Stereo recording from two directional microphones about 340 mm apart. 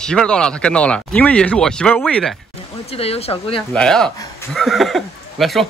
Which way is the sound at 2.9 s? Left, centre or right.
Centre.